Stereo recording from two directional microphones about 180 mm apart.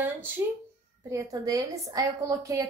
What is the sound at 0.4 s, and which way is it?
A woman's voice, 15° right (ahead or behind).